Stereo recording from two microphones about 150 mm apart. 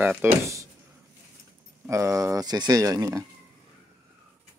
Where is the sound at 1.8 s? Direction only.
20° right (ahead or behind).